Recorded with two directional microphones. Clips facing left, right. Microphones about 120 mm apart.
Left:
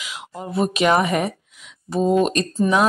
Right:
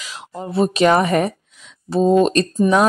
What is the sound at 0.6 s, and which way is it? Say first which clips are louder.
A woman's voice: right 3 dB; 35° right (ahead or behind).